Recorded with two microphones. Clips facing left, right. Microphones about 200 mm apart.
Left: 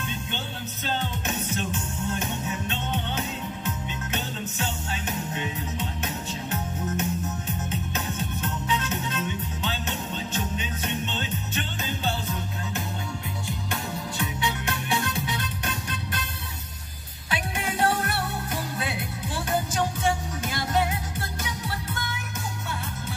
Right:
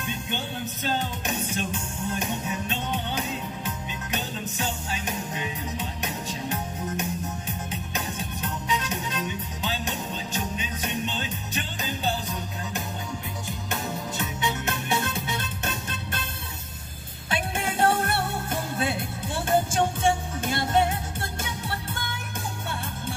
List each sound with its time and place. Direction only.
0.8 s music: 10° right (ahead or behind)
14.1 s music: 20° right (ahead or behind)
17.3 s music: 25° right (ahead or behind)